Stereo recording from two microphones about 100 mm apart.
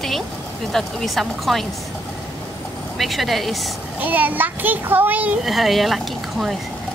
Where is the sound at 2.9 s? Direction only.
Centre (ahead or behind).